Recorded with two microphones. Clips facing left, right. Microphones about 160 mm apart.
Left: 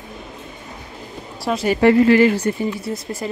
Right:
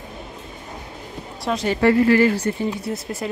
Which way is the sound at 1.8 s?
20° left (ahead or behind).